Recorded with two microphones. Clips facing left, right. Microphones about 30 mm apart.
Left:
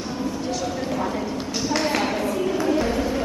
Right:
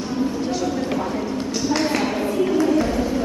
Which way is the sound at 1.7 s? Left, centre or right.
Centre.